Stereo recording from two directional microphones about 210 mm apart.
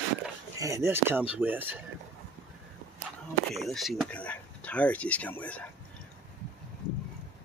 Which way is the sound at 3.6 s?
Centre (ahead or behind).